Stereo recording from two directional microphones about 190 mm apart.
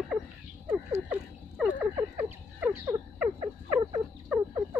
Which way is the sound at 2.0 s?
10° right (ahead or behind).